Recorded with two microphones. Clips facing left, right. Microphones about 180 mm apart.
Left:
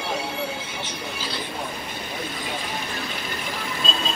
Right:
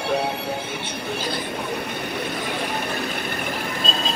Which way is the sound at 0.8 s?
55° right (ahead or behind).